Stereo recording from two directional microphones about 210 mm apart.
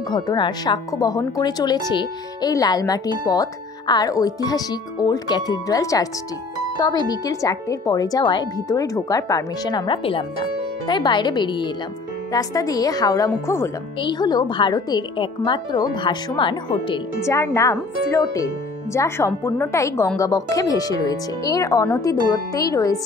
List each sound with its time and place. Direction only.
0.1 s speech: 20° left (ahead or behind)